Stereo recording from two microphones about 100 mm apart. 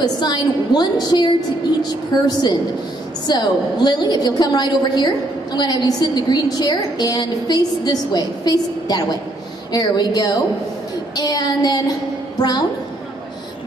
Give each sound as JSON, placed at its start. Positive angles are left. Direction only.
{"t": 0.0, "sound": "a woman's voice", "side_deg": 40}